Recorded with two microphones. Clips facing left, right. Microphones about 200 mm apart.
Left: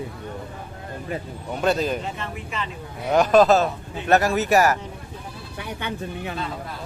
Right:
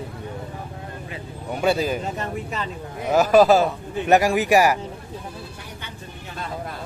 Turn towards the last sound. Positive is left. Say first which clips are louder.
# left 9 dB
turn(degrees=65)  # may be behind; listen again after turning